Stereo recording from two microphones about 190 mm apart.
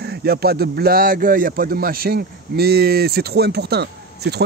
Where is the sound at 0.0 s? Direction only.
55° right (ahead or behind).